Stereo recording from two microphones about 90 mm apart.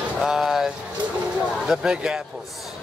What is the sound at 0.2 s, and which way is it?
Vehicle, 5° right (ahead or behind).